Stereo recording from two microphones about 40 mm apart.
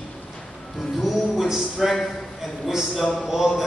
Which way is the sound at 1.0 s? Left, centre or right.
Centre.